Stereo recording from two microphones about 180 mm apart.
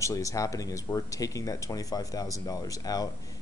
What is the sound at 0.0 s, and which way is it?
Speech, 20° left (ahead or behind).